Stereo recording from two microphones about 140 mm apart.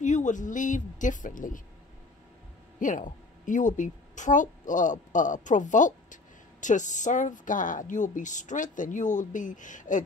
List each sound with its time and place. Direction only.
0.0 s a woman's voice: 60° left (ahead or behind)
2.8 s a woman's voice: 65° left (ahead or behind)